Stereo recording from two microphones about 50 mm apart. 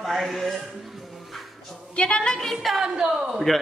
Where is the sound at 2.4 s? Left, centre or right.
Centre.